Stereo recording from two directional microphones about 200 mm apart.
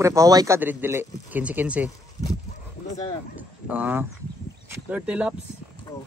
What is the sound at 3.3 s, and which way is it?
Speech, 5° right (ahead or behind).